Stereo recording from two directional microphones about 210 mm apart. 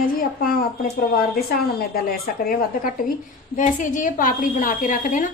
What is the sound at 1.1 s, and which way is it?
A woman's voice, 45° left (ahead or behind).